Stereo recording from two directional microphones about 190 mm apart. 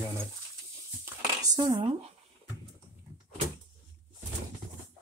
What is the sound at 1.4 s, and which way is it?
Speech, 20° right (ahead or behind).